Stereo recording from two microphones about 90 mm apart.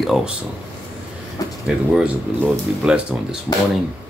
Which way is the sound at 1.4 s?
40° left (ahead or behind).